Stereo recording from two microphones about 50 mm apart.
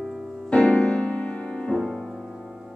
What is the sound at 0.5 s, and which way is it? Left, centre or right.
Music, left.